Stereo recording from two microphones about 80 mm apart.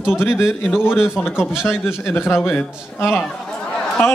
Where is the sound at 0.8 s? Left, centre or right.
Centre.